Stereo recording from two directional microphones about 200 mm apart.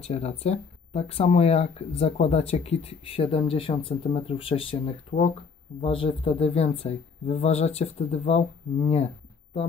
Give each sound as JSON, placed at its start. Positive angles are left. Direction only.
{"t": 0.0, "sound": "speech", "side_deg": 30}